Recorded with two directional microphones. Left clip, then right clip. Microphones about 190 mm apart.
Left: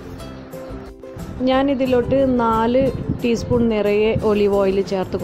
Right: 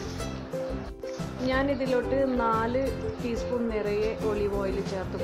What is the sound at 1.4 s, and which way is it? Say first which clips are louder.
Speech: left 9 dB; 25° left (ahead or behind).